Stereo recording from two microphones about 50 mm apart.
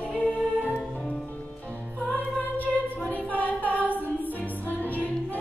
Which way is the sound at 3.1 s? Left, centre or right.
Left.